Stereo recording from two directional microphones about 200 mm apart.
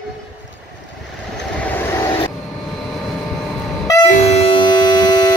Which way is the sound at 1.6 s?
10° left (ahead or behind).